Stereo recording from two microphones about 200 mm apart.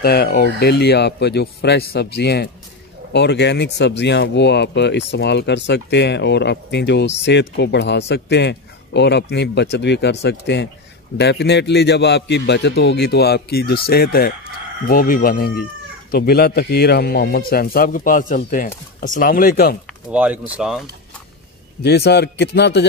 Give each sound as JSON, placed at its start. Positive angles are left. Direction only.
{"t": 0.0, "sound": "a man's voice", "side_deg": 50}
{"t": 20.1, "sound": "speech", "side_deg": -5}
{"t": 21.8, "sound": "speech", "side_deg": 55}